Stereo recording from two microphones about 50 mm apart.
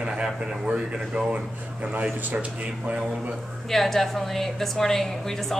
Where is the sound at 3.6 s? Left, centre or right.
Centre.